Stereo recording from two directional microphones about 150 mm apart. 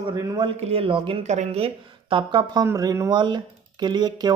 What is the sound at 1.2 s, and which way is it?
A woman's voice, 50° right (ahead or behind).